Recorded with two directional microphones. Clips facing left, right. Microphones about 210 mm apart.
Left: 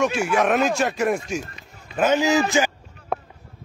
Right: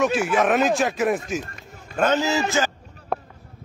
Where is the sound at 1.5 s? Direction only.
45° right (ahead or behind).